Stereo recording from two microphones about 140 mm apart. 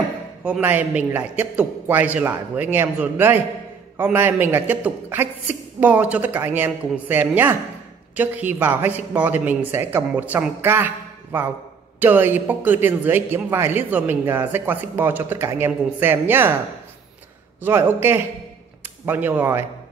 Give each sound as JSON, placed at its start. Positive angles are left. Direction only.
{"t": 0.4, "sound": "a man's voice", "side_deg": -10}
{"t": 12.0, "sound": "a man's voice", "side_deg": -15}
{"t": 17.6, "sound": "a man's voice", "side_deg": -15}